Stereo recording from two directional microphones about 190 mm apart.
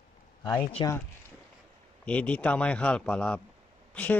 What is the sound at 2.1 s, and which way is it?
Speech, 5° left (ahead or behind).